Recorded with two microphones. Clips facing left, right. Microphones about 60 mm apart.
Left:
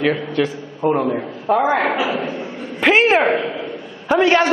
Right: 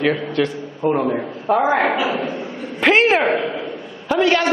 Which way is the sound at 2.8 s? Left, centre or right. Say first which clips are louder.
Left 1 dB; centre.